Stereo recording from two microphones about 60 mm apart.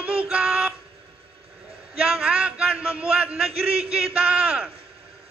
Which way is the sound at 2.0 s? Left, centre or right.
Centre.